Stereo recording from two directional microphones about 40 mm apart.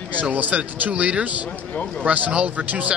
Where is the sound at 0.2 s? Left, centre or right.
Right.